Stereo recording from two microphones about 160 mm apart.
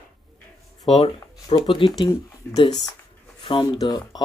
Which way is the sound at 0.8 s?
40° left (ahead or behind).